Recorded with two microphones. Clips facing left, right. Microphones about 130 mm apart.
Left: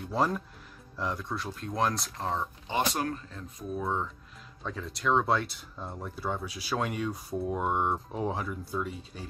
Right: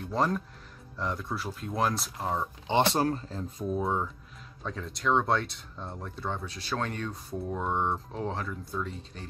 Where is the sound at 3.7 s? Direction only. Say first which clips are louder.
Right 3 dB; 20° right (ahead or behind).